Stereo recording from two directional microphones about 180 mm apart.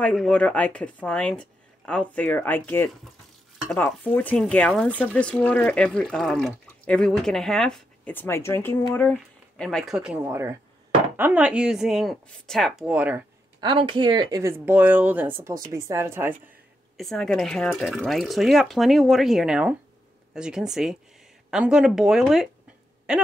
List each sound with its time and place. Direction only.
0.0 s speech: 5° left (ahead or behind)
10.2 s speech: 15° right (ahead or behind)
13.6 s speech: 25° right (ahead or behind)
16.9 s a woman's voice: centre (ahead or behind)